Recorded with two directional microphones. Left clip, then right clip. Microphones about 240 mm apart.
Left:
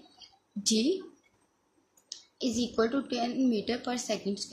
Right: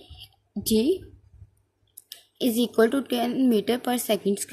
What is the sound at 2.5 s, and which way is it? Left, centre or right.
A woman's voice, right.